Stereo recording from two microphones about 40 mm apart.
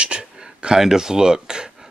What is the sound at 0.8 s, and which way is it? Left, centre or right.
Speech, centre.